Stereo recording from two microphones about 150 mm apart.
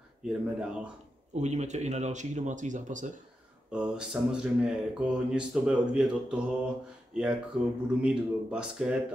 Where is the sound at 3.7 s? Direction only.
5° right (ahead or behind).